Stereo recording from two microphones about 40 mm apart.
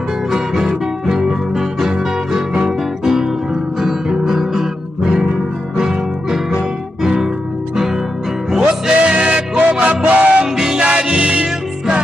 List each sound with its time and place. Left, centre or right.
0.3 s music: centre
1.9 s music: right
3.8 s guitar: centre
7.0 s guitar: centre
8.5 s music: centre
9.0 s music: right
10.4 s music: centre